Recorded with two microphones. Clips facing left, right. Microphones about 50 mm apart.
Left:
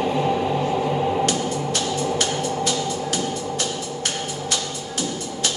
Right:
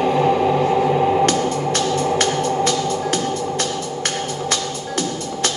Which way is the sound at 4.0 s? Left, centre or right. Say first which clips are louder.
Right 4 dB; right.